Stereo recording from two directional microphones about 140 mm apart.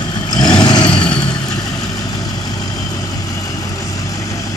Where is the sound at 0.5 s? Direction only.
30° left (ahead or behind).